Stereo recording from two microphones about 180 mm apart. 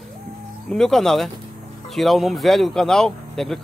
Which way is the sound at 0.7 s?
5° left (ahead or behind).